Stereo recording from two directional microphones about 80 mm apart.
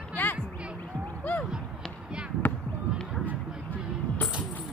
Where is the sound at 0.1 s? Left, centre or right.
Left.